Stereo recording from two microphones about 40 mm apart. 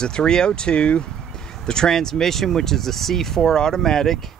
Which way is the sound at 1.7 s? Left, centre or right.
Centre.